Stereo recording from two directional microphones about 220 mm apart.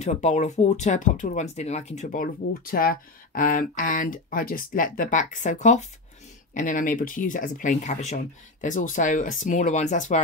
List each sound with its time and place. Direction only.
0.0 s speech: 30° left (ahead or behind)